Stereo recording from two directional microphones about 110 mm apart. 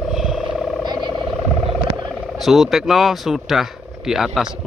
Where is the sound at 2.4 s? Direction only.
Centre (ahead or behind).